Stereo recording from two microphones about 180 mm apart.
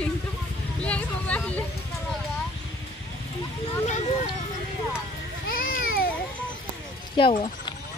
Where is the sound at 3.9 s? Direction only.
40° left (ahead or behind).